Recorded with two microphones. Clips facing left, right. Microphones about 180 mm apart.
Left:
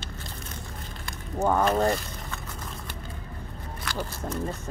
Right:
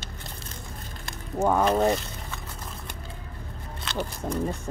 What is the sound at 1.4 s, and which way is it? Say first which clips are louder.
Speech: right 1 dB; 10° right (ahead or behind).